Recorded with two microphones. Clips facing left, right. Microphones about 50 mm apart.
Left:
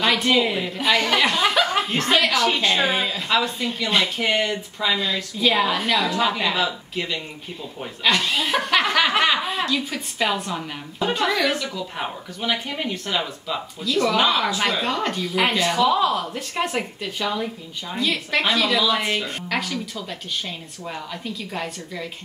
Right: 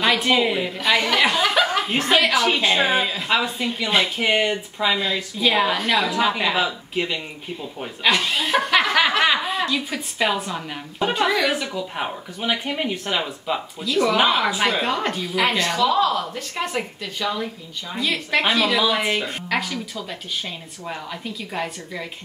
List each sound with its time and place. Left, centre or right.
0.0 s a woman's voice: centre
15.3 s a woman's voice: centre
17.9 s a woman's voice: centre